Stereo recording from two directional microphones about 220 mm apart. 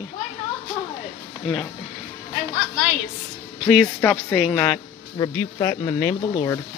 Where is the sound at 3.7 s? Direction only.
5° left (ahead or behind).